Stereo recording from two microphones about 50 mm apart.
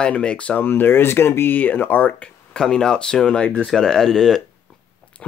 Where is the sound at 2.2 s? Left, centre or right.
Centre.